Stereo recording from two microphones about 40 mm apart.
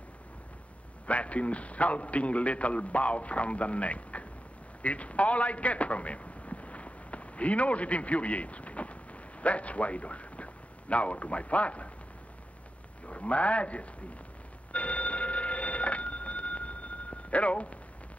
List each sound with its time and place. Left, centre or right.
1.0 s a man's voice: left
13.0 s a man's voice: left
14.7 s telephone: left